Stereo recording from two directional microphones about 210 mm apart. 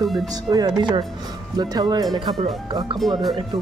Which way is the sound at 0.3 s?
20° right (ahead or behind).